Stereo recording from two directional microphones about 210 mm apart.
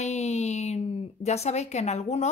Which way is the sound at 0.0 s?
30° left (ahead or behind).